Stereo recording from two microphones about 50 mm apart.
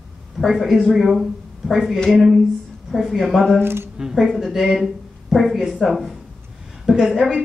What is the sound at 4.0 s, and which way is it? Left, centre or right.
A woman's voice, centre.